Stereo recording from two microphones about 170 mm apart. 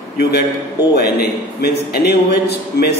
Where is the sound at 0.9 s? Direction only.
65° left (ahead or behind).